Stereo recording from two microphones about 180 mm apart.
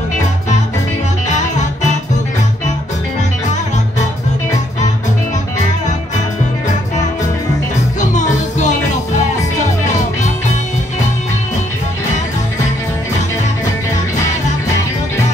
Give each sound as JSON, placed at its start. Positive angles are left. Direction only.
{"t": 1.3, "sound": "music", "side_deg": 40}
{"t": 8.0, "sound": "music", "side_deg": 40}